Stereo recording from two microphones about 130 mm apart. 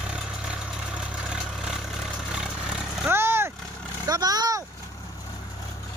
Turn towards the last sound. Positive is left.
turn(degrees=-30)  # may be behind; listen again after turning